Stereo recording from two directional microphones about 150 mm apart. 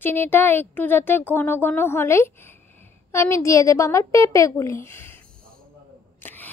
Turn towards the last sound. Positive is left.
turn(degrees=10)  # may be behind; listen again after turning